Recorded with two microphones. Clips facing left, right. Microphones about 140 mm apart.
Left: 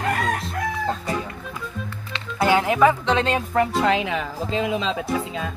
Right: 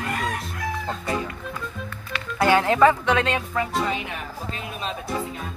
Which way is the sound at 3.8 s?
90° left.